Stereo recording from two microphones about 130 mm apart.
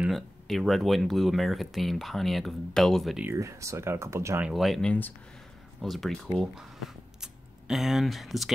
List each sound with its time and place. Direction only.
0.0 s speech: centre (ahead or behind)
3.3 s speech: 25° right (ahead or behind)
4.4 s speech: 5° right (ahead or behind)
7.2 s speech: 5° right (ahead or behind)